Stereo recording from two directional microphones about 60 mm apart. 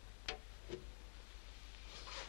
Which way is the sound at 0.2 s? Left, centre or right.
Right.